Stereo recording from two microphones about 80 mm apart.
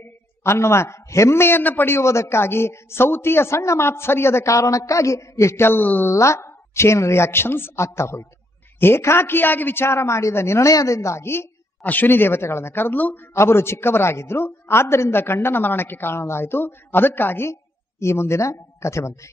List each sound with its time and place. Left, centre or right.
0.0 s a man's voice: left
6.1 s a man's voice: left
11.8 s speech: left
13.3 s a man's voice: left